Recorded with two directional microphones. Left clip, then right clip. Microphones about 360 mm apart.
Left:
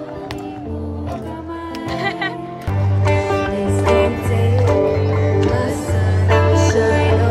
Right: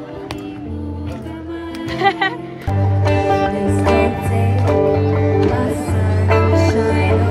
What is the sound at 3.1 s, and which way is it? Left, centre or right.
Music, right.